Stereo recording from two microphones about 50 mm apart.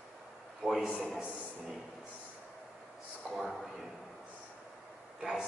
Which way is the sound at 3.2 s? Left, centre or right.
Left.